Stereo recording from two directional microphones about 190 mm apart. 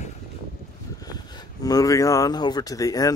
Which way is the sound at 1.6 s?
20° left (ahead or behind).